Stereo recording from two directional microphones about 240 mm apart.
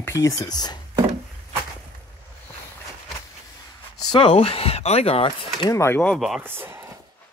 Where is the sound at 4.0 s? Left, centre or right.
Centre.